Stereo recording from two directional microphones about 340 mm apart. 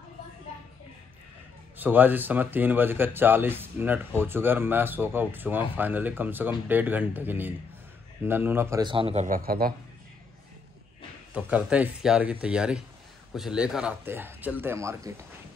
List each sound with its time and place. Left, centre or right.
1.8 s a man's voice: centre; by 9.8 s right
11.3 s speech: centre